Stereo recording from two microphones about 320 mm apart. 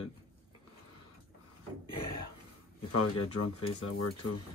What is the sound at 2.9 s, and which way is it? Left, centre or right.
Speech, left.